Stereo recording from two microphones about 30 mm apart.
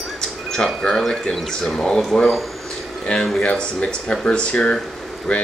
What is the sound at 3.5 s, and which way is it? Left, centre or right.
Speech, left.